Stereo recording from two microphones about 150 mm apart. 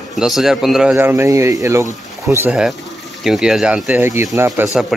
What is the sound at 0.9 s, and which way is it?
Speech, 15° right (ahead or behind).